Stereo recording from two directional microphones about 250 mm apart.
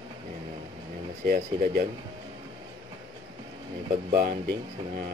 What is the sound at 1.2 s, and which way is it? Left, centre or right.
Speech, right.